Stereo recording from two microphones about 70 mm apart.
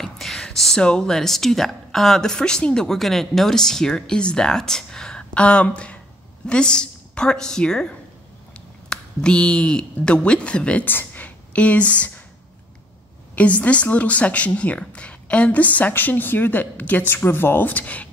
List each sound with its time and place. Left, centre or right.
0.0 s a woman's voice: centre
13.4 s a woman's voice: centre